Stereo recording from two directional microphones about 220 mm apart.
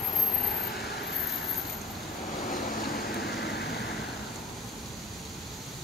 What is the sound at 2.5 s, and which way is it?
Vehicle, 40° left (ahead or behind).